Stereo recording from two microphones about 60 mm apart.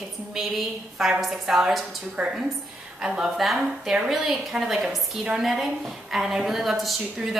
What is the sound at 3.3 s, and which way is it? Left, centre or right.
A woman's voice, centre.